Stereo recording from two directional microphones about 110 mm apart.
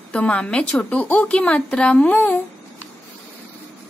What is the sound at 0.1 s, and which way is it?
Speech, 10° left (ahead or behind).